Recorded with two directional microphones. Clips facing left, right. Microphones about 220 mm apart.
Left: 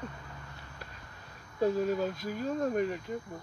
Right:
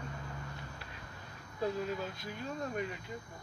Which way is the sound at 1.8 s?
40° left (ahead or behind).